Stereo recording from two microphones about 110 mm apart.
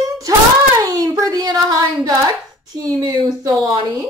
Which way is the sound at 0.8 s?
30° right (ahead or behind).